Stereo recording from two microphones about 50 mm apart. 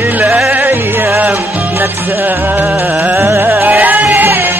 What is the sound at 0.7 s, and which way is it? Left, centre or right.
Music, right.